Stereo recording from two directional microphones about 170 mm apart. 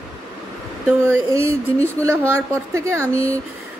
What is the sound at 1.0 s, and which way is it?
A woman's voice, 15° right (ahead or behind).